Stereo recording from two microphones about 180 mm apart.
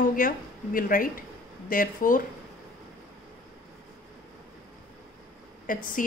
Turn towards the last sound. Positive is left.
turn(degrees=45)  # may be behind; listen again after turning